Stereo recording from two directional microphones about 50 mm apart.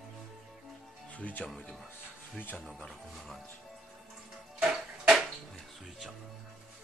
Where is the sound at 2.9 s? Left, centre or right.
Centre.